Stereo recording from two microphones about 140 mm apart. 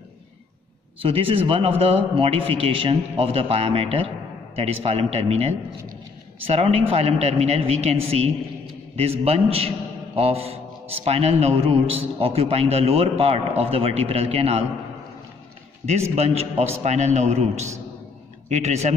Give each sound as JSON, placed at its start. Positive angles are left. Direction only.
{"t": 1.0, "sound": "a man's voice", "side_deg": -40}
{"t": 15.8, "sound": "a man's voice", "side_deg": -50}